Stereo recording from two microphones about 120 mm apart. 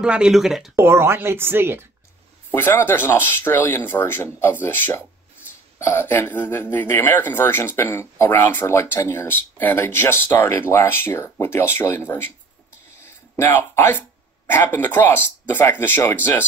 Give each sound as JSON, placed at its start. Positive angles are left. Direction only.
{"t": 0.0, "sound": "speech", "side_deg": -5}
{"t": 0.7, "sound": "speech", "side_deg": -20}
{"t": 2.5, "sound": "speech", "side_deg": 15}